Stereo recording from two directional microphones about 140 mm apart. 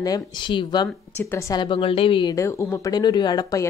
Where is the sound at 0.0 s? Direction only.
30° left (ahead or behind).